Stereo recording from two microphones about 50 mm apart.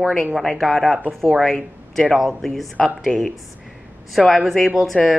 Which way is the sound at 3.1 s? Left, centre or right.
Left.